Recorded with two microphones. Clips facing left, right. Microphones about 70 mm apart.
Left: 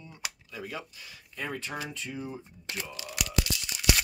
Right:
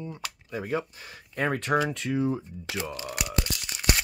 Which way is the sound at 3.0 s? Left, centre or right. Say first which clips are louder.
Right 4 dB; right.